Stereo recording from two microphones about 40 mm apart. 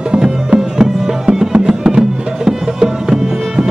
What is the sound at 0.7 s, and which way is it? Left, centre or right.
Music, centre.